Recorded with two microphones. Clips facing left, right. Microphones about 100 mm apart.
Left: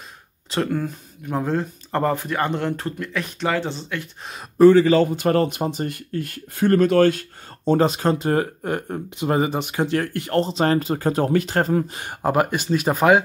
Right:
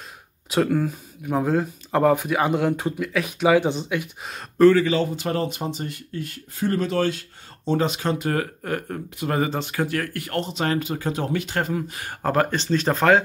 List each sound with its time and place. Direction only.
0.5 s speech: 5° right (ahead or behind)
4.9 s speech: 50° left (ahead or behind); by 12.0 s 35° left (ahead or behind)
12.0 s speech: 20° left (ahead or behind)